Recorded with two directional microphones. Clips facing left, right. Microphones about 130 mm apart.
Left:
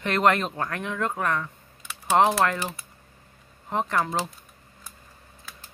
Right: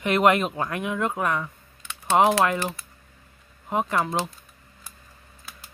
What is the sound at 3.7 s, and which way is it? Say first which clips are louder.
Speech: right 1 dB; 10° right (ahead or behind).